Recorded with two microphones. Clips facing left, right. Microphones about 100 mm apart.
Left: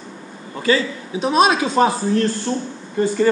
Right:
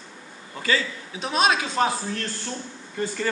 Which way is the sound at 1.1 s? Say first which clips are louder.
Left 7 dB; 15° left (ahead or behind).